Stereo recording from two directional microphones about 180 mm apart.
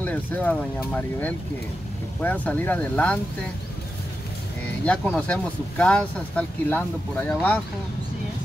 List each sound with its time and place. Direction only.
0.0 s speech: 10° left (ahead or behind)
4.8 s speech: 5° left (ahead or behind)